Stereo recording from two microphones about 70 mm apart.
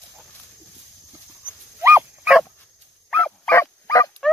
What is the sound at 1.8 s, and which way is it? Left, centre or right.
Dog, right.